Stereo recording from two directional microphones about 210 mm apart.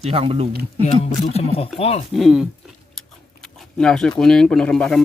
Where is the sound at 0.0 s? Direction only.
30° right (ahead or behind).